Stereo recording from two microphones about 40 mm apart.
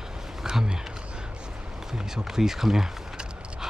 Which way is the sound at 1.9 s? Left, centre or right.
Centre.